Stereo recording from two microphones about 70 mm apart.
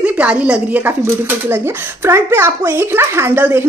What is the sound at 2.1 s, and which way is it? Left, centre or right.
A woman's voice, right.